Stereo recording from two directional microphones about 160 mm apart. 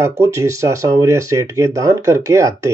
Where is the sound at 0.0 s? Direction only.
20° right (ahead or behind).